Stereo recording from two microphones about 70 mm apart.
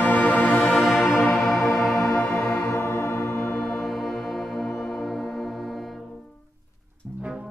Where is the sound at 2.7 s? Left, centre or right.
Left.